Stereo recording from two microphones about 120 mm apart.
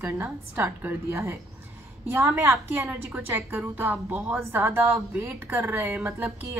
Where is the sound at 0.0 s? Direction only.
15° right (ahead or behind).